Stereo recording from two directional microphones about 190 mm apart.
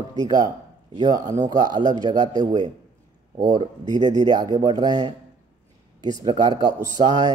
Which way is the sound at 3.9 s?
20° right (ahead or behind).